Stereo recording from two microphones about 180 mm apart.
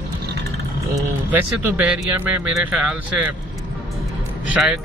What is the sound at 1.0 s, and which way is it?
Speech, 10° right (ahead or behind).